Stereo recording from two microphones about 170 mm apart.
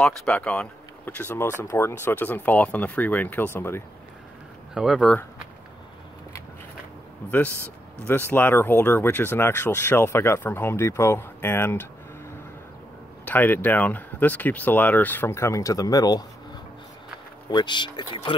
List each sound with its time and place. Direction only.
0.0 s speech: 5° left (ahead or behind)
4.7 s speech: centre (ahead or behind)
7.2 s speech: 10° left (ahead or behind)
13.2 s speech: 10° left (ahead or behind)
17.5 s speech: 25° left (ahead or behind)